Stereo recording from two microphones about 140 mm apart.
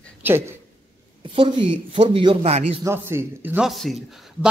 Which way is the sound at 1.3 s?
35° right (ahead or behind).